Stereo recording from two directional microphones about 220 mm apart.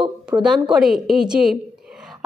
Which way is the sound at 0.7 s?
Centre (ahead or behind).